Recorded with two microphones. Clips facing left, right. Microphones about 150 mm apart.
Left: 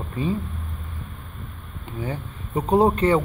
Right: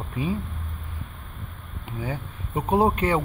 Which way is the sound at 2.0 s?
10° right (ahead or behind).